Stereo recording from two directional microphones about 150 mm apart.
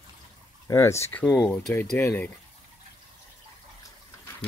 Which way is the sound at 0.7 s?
20° left (ahead or behind).